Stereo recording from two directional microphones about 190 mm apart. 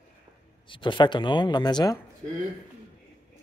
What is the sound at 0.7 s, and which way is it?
Speech, 25° left (ahead or behind).